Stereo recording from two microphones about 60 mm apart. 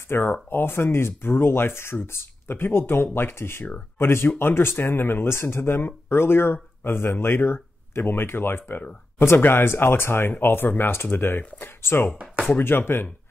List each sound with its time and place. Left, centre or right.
0.1 s speech: left